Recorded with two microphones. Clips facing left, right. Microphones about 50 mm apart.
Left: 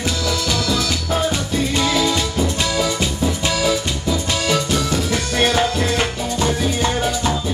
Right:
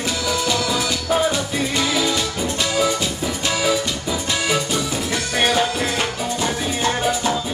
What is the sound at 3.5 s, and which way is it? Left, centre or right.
Music, centre.